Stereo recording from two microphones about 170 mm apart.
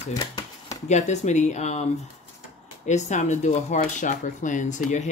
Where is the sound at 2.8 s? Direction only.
45° left (ahead or behind).